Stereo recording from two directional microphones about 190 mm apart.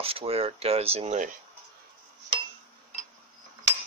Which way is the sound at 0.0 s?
30° right (ahead or behind).